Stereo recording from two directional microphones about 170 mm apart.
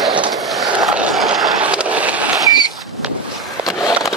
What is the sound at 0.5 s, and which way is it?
Skateboard, centre (ahead or behind).